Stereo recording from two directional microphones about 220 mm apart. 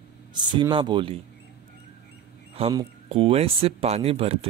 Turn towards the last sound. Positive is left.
turn(degrees=-25)  # may be behind; listen again after turning